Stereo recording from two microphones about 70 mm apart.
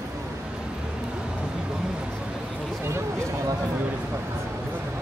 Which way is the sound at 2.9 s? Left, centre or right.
Right.